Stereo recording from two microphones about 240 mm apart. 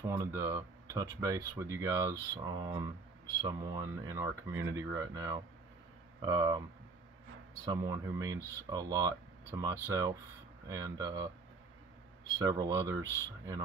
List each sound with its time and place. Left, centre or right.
0.0 s speech: centre
7.6 s speech: centre
12.3 s speech: centre